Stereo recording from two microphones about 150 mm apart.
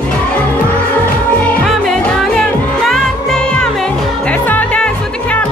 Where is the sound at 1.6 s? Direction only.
5° left (ahead or behind).